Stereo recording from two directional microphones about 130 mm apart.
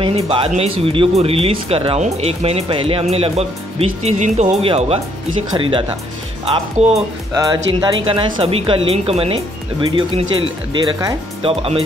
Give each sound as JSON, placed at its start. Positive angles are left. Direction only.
{"t": 0.0, "sound": "speech", "side_deg": -45}
{"t": 5.5, "sound": "speech", "side_deg": -40}
{"t": 6.4, "sound": "speech", "side_deg": -50}
{"t": 7.3, "sound": "speech", "side_deg": -30}
{"t": 8.0, "sound": "speech", "side_deg": -45}